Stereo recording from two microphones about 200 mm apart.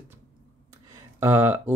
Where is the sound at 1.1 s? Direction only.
10° right (ahead or behind).